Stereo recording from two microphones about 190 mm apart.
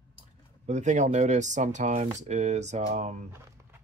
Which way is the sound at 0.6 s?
40° right (ahead or behind).